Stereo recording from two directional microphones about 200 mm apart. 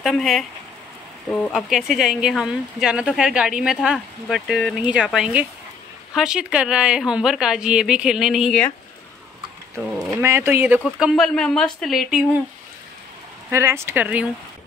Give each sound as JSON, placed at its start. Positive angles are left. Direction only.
{"t": 0.0, "sound": "speech", "side_deg": 0}
{"t": 9.8, "sound": "speech", "side_deg": -5}
{"t": 13.5, "sound": "speech", "side_deg": -10}